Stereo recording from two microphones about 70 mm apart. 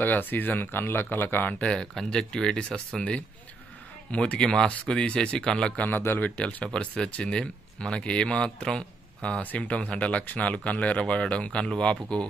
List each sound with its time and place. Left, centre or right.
0.0 s speech: left
1.8 s speech: centre
5.9 s speech: left; by 12.0 s centre